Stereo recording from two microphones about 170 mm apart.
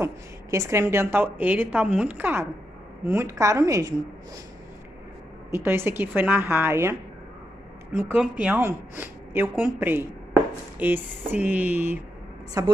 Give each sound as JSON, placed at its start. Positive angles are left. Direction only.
{"t": 0.0, "sound": "a woman's voice", "side_deg": -15}
{"t": 5.5, "sound": "a woman's voice", "side_deg": -15}
{"t": 12.6, "sound": "a woman's voice", "side_deg": -20}